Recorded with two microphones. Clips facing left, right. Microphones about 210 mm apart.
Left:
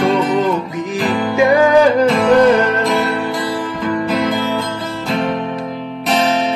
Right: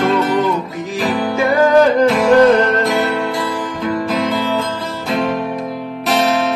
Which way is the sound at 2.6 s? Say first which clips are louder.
Right 1 dB; 10° left (ahead or behind).